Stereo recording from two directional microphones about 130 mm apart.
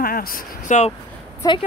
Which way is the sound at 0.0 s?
90° left.